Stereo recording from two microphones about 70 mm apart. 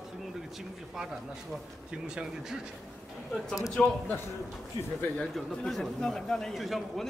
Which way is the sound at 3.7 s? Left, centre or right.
Left.